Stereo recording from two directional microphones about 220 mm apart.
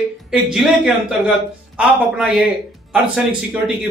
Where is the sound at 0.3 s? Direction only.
5° right (ahead or behind).